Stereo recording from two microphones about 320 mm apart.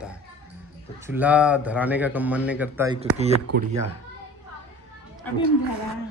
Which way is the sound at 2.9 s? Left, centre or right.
Centre.